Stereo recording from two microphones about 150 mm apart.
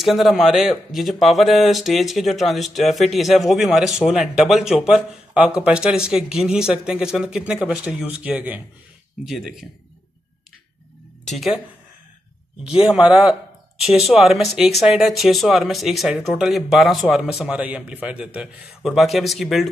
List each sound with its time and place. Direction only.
0.0 s speech: centre (ahead or behind)
11.2 s speech: centre (ahead or behind)
12.6 s speech: 5° right (ahead or behind)